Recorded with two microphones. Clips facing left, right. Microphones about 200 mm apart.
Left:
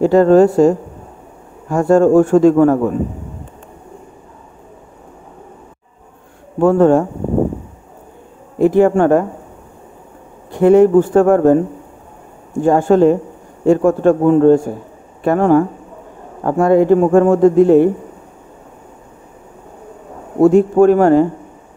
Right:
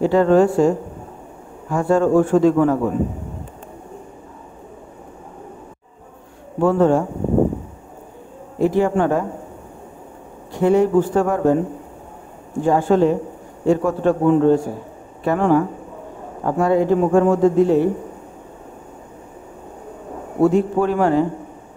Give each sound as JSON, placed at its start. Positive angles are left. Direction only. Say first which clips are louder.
{"t": 0.0, "sound": "a woman's voice", "louder": "left 5 dB", "side_deg": 45}
{"t": 6.6, "sound": "a man's voice", "louder": "left 5 dB", "side_deg": 50}
{"t": 8.5, "sound": "speech", "louder": "left 6 dB", "side_deg": 55}
{"t": 10.5, "sound": "a man's voice", "louder": "left 6 dB", "side_deg": 55}
{"t": 12.6, "sound": "a man's voice", "louder": "left 5 dB", "side_deg": 50}
{"t": 20.4, "sound": "a man's voice", "louder": "left 7 dB", "side_deg": 50}